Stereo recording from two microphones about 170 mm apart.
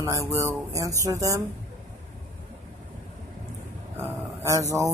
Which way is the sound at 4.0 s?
20° right (ahead or behind).